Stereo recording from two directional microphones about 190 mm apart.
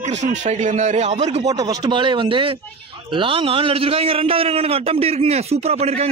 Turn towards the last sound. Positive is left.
turn(degrees=-35)  # may be behind; listen again after turning